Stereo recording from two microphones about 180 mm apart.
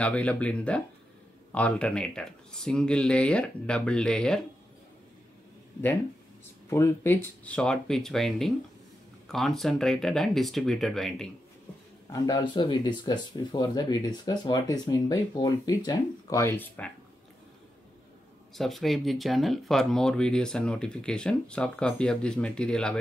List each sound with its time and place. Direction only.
0.0 s speech: 5° left (ahead or behind)
6.7 s speech: 15° left (ahead or behind)
12.1 s speech: 20° left (ahead or behind)
18.5 s speech: centre (ahead or behind)